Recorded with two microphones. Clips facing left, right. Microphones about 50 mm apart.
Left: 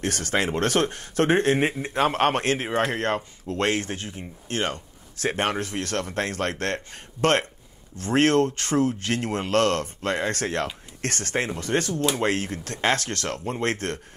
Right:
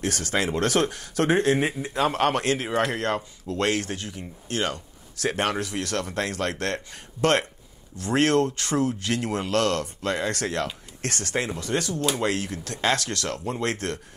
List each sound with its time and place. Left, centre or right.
0.0 s speech: left